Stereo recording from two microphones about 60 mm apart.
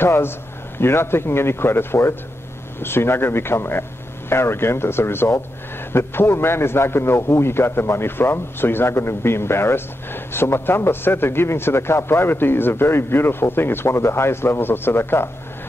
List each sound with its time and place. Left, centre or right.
0.0 s a man's voice: left